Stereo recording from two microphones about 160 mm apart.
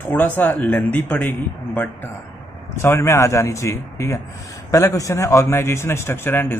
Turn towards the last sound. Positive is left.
turn(degrees=15)  # may be behind; listen again after turning